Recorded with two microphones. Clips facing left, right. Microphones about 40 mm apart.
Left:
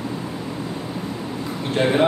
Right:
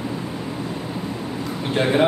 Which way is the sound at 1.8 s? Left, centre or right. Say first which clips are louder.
Even; centre.